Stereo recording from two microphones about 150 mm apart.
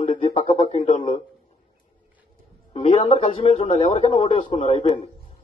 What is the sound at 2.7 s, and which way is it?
A man's voice, 40° left (ahead or behind).